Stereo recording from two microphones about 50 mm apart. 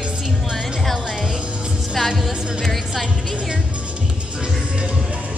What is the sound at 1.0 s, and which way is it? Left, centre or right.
Speech, centre.